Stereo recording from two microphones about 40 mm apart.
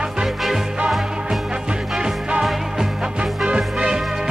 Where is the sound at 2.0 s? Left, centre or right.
Centre.